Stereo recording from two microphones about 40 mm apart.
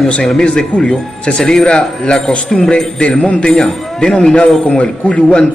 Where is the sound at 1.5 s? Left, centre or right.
Left.